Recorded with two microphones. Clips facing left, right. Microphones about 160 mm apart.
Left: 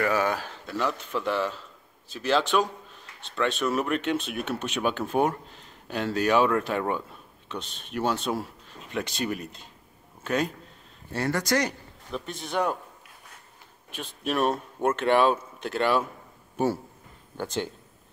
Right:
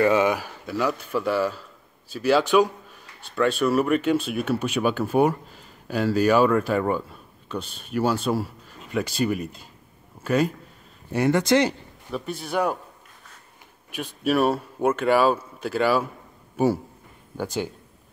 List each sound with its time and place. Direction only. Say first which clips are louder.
0.0 s speech: right 6 dB; 20° right (ahead or behind)
11.1 s speech: right 7 dB; 20° right (ahead or behind)
12.1 s speech: right 4 dB; 5° right (ahead or behind)
13.8 s a man's voice: right 6 dB; 10° right (ahead or behind)